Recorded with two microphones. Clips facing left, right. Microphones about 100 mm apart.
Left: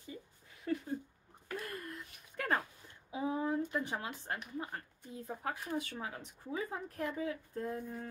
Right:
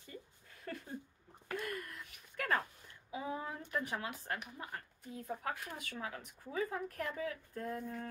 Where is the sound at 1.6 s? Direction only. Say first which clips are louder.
Right 1 dB; 30° left (ahead or behind).